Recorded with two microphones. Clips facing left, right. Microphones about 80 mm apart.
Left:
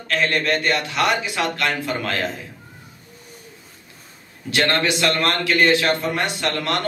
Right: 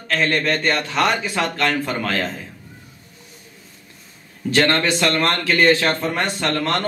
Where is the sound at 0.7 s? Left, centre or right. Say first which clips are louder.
Right 1 dB; right.